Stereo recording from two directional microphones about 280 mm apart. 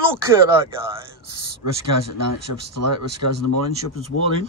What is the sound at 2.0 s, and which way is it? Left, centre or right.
Speech, right.